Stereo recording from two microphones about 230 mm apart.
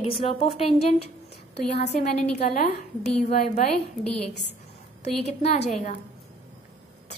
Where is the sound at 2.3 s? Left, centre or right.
Left.